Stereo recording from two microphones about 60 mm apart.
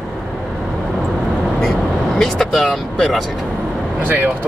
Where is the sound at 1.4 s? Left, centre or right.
Centre.